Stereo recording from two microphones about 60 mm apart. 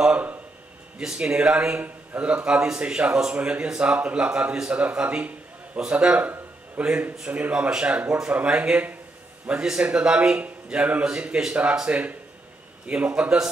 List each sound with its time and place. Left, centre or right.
0.9 s a man's voice: centre
6.1 s speech: right
6.8 s a man's voice: centre